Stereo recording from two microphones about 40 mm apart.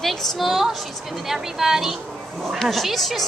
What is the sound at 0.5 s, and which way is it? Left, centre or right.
A child's voice, centre.